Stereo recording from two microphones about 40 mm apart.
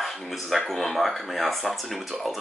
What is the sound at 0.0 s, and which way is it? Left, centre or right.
Speech, centre.